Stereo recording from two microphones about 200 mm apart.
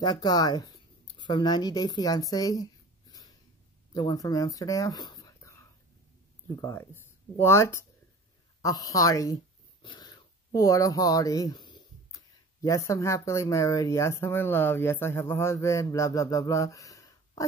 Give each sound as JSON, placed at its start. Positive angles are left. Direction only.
{"t": 0.0, "sound": "speech", "side_deg": 20}
{"t": 8.6, "sound": "dog", "side_deg": 15}
{"t": 12.6, "sound": "speech", "side_deg": 15}